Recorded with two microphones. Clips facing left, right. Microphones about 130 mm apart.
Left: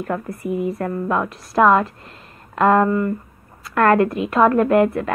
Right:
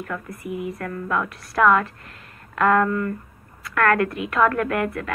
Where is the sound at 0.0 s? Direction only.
35° left (ahead or behind).